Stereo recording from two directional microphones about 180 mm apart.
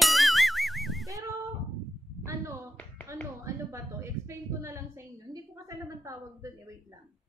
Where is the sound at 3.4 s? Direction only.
15° right (ahead or behind).